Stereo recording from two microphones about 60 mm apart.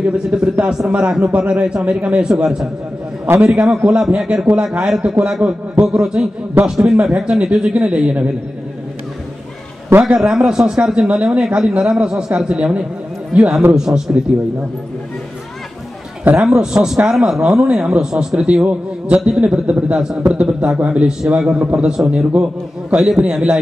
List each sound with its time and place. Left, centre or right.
0.0 s a man's voice: centre
10.0 s a man's voice: centre
13.7 s a man's voice: centre
16.3 s a man's voice: centre